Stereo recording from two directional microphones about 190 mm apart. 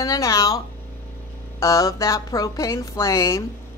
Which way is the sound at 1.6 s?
15° left (ahead or behind).